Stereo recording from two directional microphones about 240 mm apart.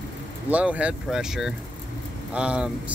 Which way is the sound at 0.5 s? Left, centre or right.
Centre.